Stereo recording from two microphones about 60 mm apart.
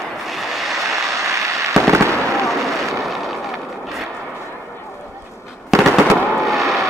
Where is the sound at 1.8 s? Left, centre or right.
Right.